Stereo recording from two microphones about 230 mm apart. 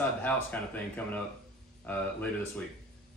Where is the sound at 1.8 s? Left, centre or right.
Centre.